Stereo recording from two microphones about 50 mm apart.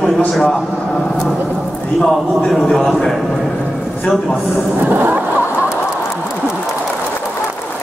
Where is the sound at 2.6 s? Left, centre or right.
Centre.